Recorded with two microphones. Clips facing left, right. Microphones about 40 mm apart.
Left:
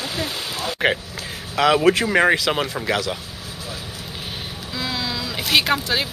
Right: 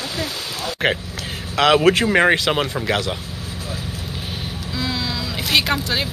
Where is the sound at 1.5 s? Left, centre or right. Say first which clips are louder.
Right 2 dB; right.